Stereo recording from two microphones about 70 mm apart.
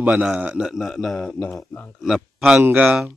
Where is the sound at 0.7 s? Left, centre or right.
Centre.